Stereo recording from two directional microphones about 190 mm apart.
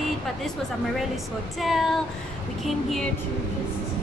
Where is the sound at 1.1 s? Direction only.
Centre (ahead or behind).